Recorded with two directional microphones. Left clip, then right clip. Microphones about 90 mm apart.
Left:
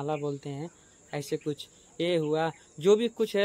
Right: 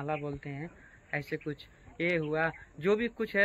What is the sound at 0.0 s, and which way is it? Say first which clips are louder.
Speech: left 4 dB; 20° left (ahead or behind).